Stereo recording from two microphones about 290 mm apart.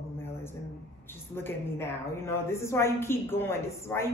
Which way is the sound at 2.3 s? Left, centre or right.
Centre.